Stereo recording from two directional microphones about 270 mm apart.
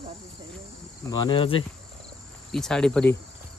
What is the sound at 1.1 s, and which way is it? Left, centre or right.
Speech, centre.